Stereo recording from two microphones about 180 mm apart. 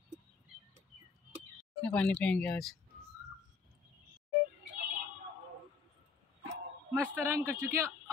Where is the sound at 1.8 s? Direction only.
10° left (ahead or behind).